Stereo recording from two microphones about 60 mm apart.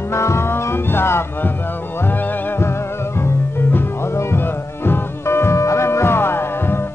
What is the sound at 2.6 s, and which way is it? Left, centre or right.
Music, left.